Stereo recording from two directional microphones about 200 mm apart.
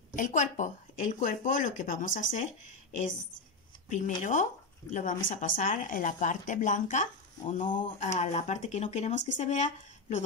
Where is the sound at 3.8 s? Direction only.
40° left (ahead or behind).